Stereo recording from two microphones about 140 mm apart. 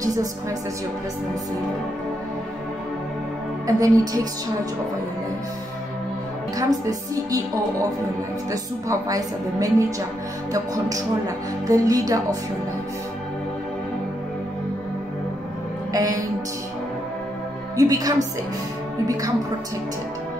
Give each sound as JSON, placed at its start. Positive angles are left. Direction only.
{"t": 0.0, "sound": "speech", "side_deg": -25}
{"t": 3.6, "sound": "speech", "side_deg": -25}
{"t": 6.6, "sound": "speech", "side_deg": -25}
{"t": 8.5, "sound": "speech", "side_deg": -25}
{"t": 15.9, "sound": "speech", "side_deg": -25}
{"t": 17.7, "sound": "speech", "side_deg": -25}